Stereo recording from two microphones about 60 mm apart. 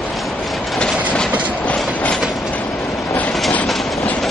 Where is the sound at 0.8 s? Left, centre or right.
Centre.